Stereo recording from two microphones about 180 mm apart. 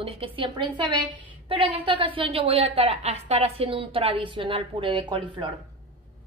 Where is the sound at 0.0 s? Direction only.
30° right (ahead or behind).